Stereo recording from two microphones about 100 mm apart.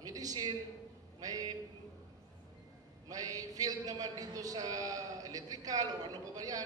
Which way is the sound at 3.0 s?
35° right (ahead or behind).